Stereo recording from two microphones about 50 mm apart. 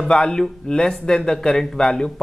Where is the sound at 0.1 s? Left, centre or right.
Centre.